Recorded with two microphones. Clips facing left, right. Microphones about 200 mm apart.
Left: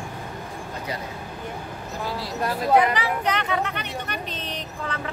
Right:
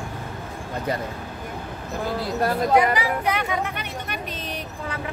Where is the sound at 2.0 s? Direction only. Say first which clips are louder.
Right 4 dB; 50° right (ahead or behind).